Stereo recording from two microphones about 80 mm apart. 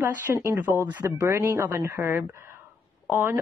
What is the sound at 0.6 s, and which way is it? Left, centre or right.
Speech, right.